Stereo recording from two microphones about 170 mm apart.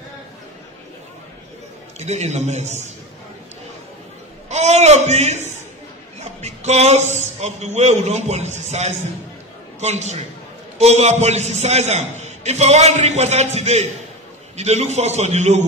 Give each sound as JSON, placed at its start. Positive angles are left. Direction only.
{"t": 2.0, "sound": "a man's voice", "side_deg": -40}
{"t": 4.5, "sound": "a man's voice", "side_deg": -40}
{"t": 6.4, "sound": "a man's voice", "side_deg": -40}